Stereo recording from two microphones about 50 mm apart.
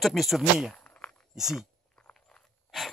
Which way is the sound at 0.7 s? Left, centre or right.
Left.